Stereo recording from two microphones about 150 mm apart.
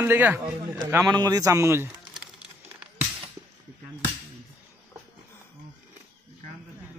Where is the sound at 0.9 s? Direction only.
25° right (ahead or behind).